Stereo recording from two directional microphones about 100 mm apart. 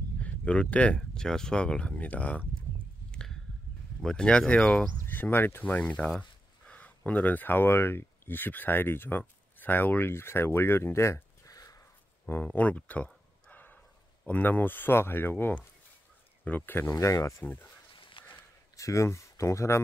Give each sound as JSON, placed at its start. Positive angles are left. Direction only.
{"t": 0.2, "sound": "speech", "side_deg": 10}
{"t": 3.1, "sound": "a sound", "side_deg": 5}
{"t": 4.0, "sound": "speech", "side_deg": 10}
{"t": 12.3, "sound": "a sound", "side_deg": 20}
{"t": 14.2, "sound": "speech", "side_deg": 15}
{"t": 16.9, "sound": "speech", "side_deg": 30}
{"t": 17.4, "sound": "speech", "side_deg": 15}
{"t": 18.2, "sound": "a sound", "side_deg": 60}
{"t": 18.8, "sound": "speech", "side_deg": 30}